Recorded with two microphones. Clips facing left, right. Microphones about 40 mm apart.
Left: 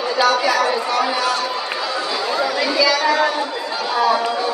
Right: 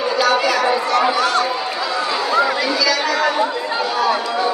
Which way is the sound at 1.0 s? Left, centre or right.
Right.